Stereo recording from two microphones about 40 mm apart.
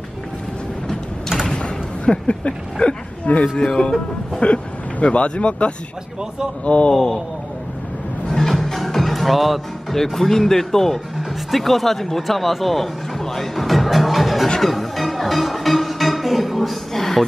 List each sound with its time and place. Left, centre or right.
1.5 s a sound: left
3.3 s speech: left
4.4 s speech: left
6.9 s a sound: centre
8.3 s music: centre
11.1 s speech: centre
14.6 s music: centre